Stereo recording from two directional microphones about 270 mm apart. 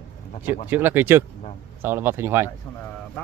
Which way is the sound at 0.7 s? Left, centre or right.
Centre.